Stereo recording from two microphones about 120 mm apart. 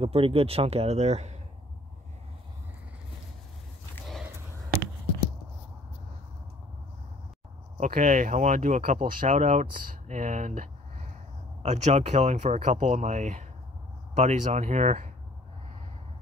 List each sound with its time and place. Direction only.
0.0 s speech: 50° right (ahead or behind); by 1.4 s 65° right (ahead or behind)
7.7 s speech: 90° right
11.6 s speech: 70° right (ahead or behind)